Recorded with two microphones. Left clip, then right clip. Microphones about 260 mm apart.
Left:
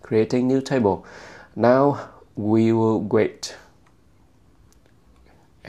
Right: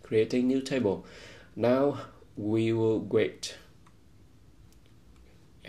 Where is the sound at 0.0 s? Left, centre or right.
Left.